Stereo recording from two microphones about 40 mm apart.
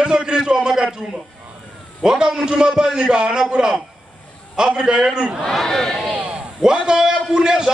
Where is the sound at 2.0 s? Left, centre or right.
Centre.